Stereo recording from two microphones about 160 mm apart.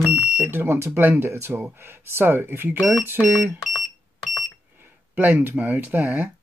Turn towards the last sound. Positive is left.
turn(degrees=-10)  # may be behind; listen again after turning